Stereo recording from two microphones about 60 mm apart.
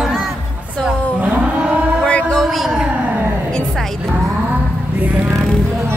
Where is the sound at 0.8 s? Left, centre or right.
Right.